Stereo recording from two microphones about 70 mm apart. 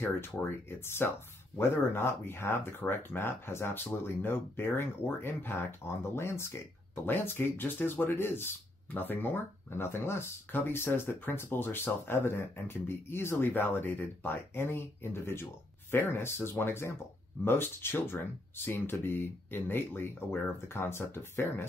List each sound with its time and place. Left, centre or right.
0.1 s speech: left